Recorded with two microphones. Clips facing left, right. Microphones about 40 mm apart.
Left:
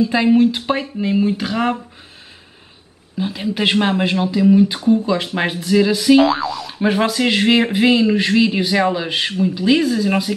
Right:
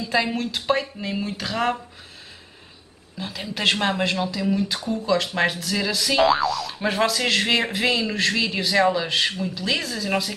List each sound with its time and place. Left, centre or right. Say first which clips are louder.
0.1 s speech: left 9 dB; centre
3.2 s speech: left 9 dB; centre
6.2 s speech: left 1 dB; centre
6.5 s speech: left 6 dB; centre